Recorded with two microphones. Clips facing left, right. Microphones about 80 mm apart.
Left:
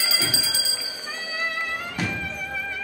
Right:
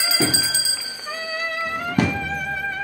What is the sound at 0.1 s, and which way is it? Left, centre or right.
Bell, right.